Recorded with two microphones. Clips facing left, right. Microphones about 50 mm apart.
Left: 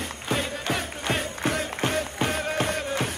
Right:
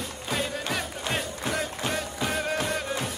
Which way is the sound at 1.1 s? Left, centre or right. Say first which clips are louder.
Left 4 dB; left.